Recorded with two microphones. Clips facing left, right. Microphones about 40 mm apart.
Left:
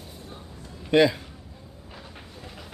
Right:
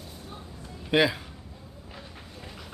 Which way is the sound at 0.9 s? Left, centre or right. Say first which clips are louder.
Left 4 dB; centre.